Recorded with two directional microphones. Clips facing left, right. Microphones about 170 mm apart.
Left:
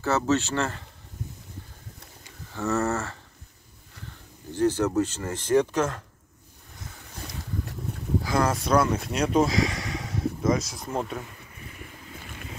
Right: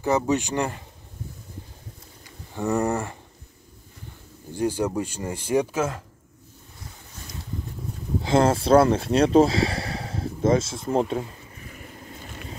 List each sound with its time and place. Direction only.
0.0 s speech: 15° right (ahead or behind)
2.5 s speech: 15° right (ahead or behind)
4.5 s speech: 10° right (ahead or behind)
8.2 s speech: 25° right (ahead or behind)